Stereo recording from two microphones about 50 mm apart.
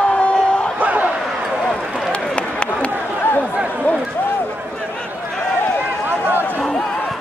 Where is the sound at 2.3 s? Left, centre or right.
Left.